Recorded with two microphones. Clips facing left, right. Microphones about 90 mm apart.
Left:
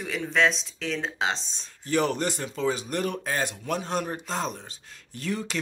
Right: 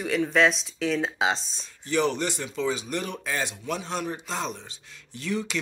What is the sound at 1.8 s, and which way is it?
A man's voice, 45° left (ahead or behind).